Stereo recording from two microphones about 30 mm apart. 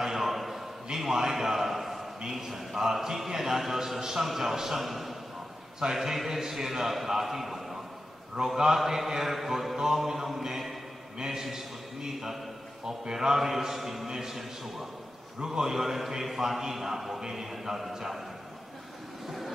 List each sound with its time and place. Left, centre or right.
0.0 s a sound: centre
2.3 s a man's voice: centre
14.0 s a man's voice: centre